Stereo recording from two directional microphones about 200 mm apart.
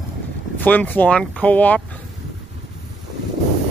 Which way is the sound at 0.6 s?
10° left (ahead or behind).